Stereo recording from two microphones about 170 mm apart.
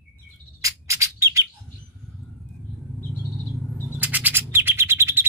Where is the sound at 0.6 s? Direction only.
15° right (ahead or behind).